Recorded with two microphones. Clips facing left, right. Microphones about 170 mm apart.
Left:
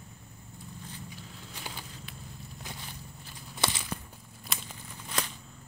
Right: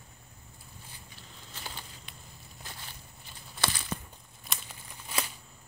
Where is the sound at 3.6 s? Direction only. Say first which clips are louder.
Left 1 dB; 15° left (ahead or behind).